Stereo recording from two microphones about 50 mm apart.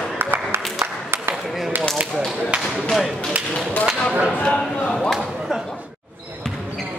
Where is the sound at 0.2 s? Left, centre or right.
Right.